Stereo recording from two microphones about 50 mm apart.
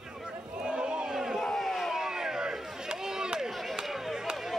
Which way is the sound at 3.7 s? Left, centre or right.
Centre.